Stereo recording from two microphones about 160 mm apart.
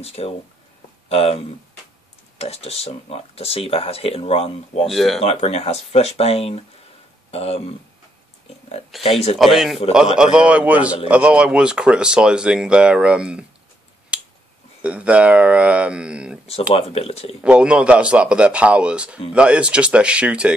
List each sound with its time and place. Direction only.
0.0 s speech: 40° left (ahead or behind)
4.8 s speech: centre (ahead or behind)
5.2 s speech: 40° left (ahead or behind)
8.9 s speech: centre (ahead or behind)
14.1 s finger snapping: 10° right (ahead or behind)
14.8 s speech: 10° right (ahead or behind)
16.7 s speech: 40° left (ahead or behind)
17.4 s speech: 5° right (ahead or behind)